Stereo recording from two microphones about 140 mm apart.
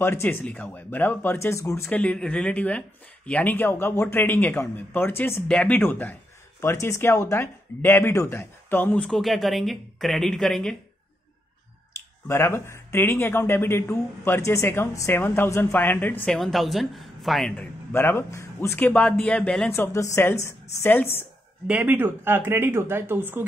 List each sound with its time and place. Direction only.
0.0 s speech: 15° left (ahead or behind)
1.9 s speech: 10° left (ahead or behind)
12.3 s speech: 20° left (ahead or behind)
16.3 s speech: centre (ahead or behind)
19.7 s speech: 20° left (ahead or behind)
21.6 s speech: 10° right (ahead or behind)